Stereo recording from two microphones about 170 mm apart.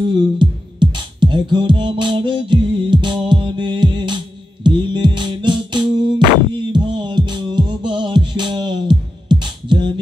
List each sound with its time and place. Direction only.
0.1 s music: 30° right (ahead or behind)